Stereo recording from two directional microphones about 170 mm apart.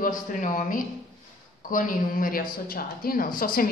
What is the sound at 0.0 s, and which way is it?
Speech, 50° left (ahead or behind).